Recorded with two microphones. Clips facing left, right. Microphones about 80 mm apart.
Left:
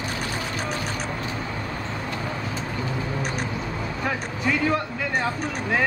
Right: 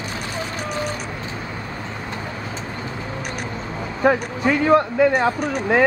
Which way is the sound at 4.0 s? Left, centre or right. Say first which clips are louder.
Right 11 dB; right.